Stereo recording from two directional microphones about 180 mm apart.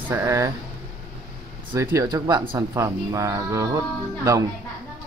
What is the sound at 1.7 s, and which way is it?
Speech, 15° right (ahead or behind).